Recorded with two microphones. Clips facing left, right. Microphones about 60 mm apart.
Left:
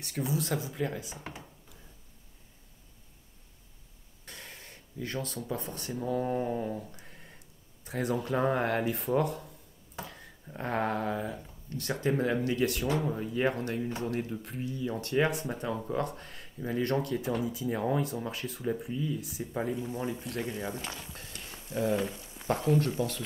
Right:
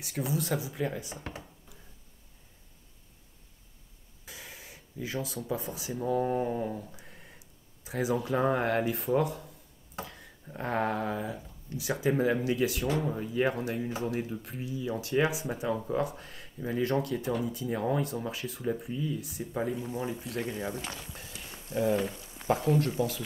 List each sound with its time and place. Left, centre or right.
0.0 s speech: centre
4.3 s speech: centre